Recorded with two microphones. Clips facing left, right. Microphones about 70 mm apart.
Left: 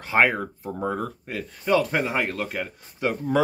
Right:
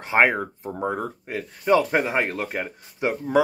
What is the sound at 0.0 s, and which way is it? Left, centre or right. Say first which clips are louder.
Speech: right 1 dB; right.